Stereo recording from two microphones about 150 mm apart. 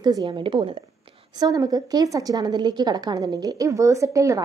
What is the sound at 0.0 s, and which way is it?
Speech, 25° right (ahead or behind).